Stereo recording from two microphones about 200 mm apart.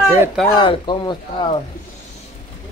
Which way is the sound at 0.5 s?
20° left (ahead or behind).